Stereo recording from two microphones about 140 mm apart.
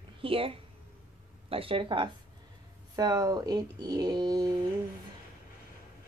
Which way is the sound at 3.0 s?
25° right (ahead or behind).